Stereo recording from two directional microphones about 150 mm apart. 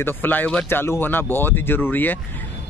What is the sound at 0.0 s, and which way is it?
Speech, 10° left (ahead or behind).